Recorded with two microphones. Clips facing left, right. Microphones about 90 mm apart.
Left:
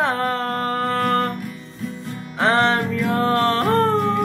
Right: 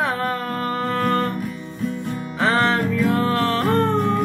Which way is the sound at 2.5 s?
45° left (ahead or behind).